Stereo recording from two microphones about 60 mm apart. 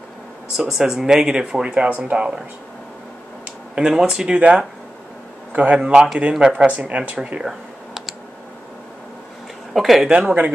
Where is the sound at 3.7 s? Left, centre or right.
Centre.